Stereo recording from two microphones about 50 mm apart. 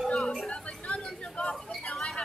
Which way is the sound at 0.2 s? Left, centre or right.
Centre.